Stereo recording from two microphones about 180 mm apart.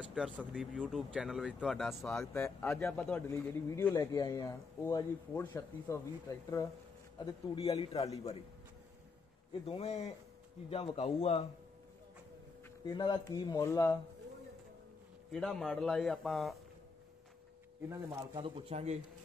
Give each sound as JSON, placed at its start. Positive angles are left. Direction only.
{"t": 0.0, "sound": "speech", "side_deg": -5}
{"t": 2.3, "sound": "speech", "side_deg": 10}
{"t": 9.5, "sound": "speech", "side_deg": 35}
{"t": 12.8, "sound": "speech", "side_deg": 20}
{"t": 15.3, "sound": "speech", "side_deg": 0}
{"t": 17.8, "sound": "speech", "side_deg": -15}
{"t": 18.4, "sound": "speech", "side_deg": -35}